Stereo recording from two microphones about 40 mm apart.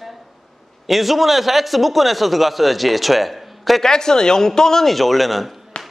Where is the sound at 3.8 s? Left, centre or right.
Centre.